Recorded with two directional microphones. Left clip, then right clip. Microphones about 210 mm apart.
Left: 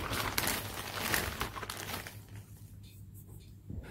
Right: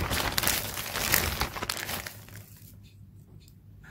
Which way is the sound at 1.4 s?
45° right (ahead or behind).